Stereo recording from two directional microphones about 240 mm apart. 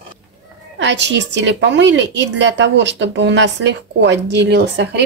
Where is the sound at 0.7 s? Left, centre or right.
Right.